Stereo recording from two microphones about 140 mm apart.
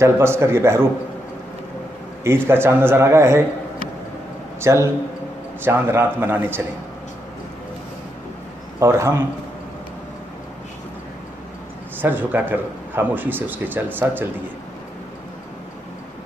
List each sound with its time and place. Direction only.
0.0 s a man's voice: 20° right (ahead or behind)
2.2 s speech: 15° right (ahead or behind)
4.6 s a man's voice: 20° right (ahead or behind)
8.7 s a man's voice: 20° right (ahead or behind)
12.0 s speech: 15° right (ahead or behind)